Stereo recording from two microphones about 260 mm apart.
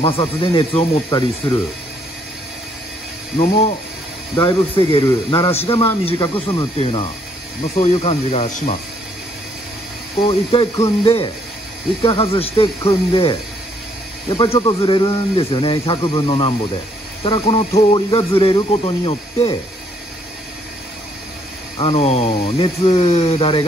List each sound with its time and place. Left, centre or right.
0.0 s speech: centre
3.3 s a man's voice: left
10.2 s a man's voice: centre
21.7 s a man's voice: left